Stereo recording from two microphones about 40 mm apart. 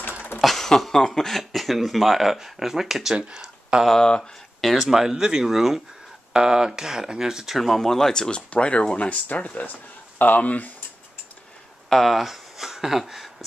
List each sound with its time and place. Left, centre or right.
0.4 s a sound: centre
0.7 s speech: centre
1.4 s speech: centre
3.3 s a sound: centre
4.0 s speech: centre
4.7 s speech: centre
7.5 s speech: centre
8.4 s speech: left
11.9 s speech: centre
12.2 s a sound: centre